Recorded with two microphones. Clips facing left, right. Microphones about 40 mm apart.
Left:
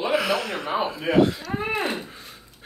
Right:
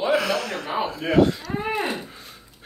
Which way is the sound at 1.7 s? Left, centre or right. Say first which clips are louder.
Even; centre.